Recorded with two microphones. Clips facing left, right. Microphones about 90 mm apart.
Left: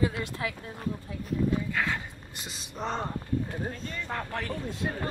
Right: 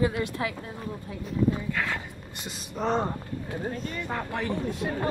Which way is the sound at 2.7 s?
15° right (ahead or behind).